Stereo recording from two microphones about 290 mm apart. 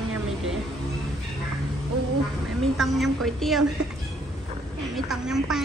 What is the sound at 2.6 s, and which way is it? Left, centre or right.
A woman's voice, centre.